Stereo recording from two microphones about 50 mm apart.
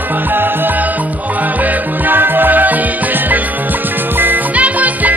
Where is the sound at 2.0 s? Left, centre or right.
Right.